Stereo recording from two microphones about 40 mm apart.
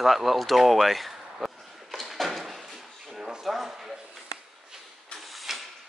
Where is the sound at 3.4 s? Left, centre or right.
Centre.